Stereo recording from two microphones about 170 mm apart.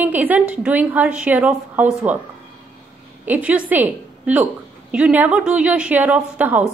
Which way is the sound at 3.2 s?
10° right (ahead or behind).